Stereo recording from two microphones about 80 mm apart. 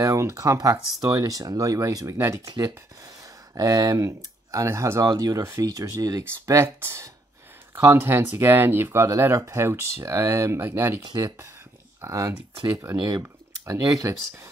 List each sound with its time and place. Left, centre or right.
0.0 s speech: right
2.1 s speech: right
2.4 s speech: right
5.0 s speech: right
6.8 s speech: right